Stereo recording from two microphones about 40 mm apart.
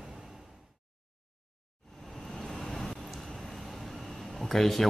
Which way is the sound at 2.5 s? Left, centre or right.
Centre.